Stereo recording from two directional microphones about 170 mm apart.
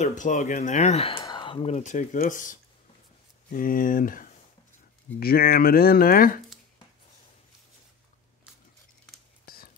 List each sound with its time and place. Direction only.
0.0 s speech: 50° left (ahead or behind)
1.2 s a sound: 25° left (ahead or behind)
1.8 s speech: 50° left (ahead or behind)
9.5 s whispering: 60° left (ahead or behind)